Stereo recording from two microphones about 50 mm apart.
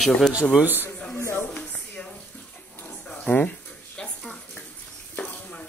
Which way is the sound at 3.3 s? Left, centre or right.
Left.